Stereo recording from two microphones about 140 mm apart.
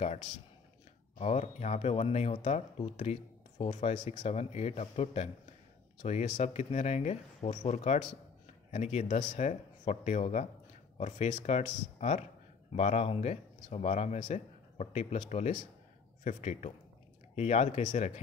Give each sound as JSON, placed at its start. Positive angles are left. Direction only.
{"t": 1.1, "sound": "speech", "side_deg": 50}